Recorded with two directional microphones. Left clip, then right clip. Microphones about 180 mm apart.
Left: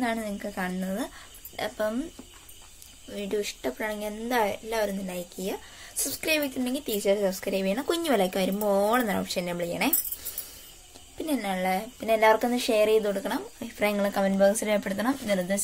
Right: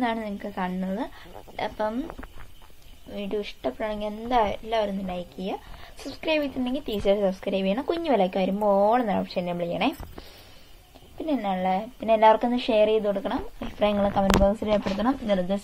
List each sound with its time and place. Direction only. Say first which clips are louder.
0.0 s speech: right 2 dB; 10° left (ahead or behind)
3.2 s a woman's voice: even; 20° left (ahead or behind)
7.8 s a woman's voice: right 2 dB; 20° left (ahead or behind)
11.2 s speech: right 2 dB; 15° left (ahead or behind)